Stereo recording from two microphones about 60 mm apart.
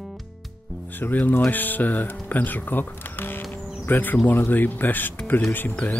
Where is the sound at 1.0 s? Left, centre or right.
Left.